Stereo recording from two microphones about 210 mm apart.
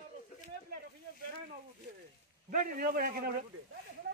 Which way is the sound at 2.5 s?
40° right (ahead or behind).